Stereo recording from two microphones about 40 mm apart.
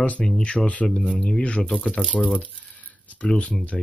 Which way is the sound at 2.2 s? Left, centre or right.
Left.